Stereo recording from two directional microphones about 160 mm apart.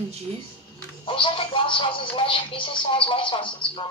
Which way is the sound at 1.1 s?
35° left (ahead or behind).